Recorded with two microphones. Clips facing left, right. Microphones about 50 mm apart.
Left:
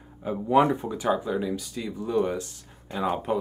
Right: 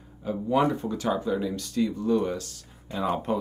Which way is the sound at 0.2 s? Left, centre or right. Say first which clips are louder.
Left 3 dB; centre.